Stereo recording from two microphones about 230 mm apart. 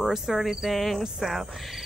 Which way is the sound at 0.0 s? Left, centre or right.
Centre.